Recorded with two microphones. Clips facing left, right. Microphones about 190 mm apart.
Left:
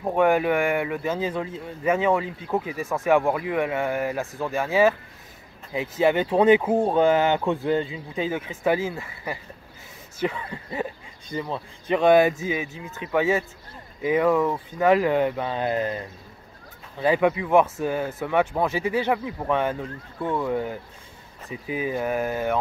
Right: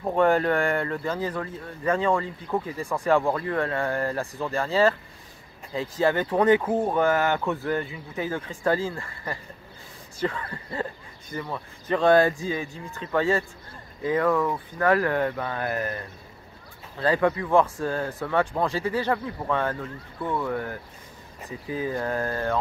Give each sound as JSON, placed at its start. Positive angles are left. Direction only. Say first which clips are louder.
{"t": 0.0, "sound": "speech", "louder": "left 1 dB", "side_deg": 15}
{"t": 6.8, "sound": "speech", "louder": "left 3 dB", "side_deg": 20}